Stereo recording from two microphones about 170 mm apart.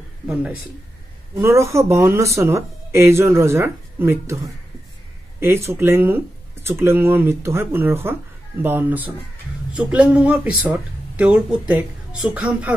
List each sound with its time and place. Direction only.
1.4 s speech: 15° right (ahead or behind)
5.4 s speech: 15° right (ahead or behind)